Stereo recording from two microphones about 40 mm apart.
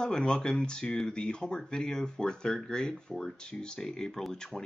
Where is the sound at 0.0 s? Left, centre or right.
Centre.